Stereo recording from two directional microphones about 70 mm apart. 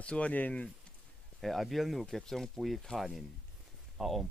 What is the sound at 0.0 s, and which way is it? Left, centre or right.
Speech, centre.